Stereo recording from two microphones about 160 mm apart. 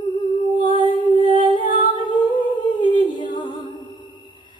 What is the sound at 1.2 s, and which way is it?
A capella, 30° right (ahead or behind).